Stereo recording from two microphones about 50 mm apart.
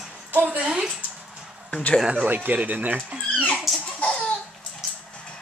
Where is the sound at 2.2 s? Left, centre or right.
Right.